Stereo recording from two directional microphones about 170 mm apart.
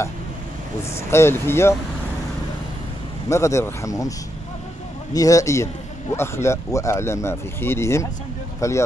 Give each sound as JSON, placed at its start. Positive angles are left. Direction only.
{"t": 0.9, "sound": "speech", "side_deg": 15}
{"t": 3.3, "sound": "speech", "side_deg": 15}
{"t": 5.1, "sound": "a man's voice", "side_deg": 20}